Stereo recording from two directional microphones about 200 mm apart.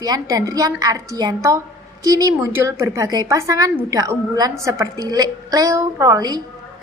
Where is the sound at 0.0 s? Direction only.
20° right (ahead or behind).